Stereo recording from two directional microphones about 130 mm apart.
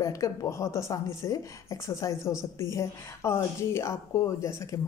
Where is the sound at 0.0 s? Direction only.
25° left (ahead or behind).